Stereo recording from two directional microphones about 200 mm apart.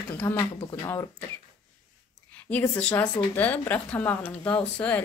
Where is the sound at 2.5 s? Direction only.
5° left (ahead or behind).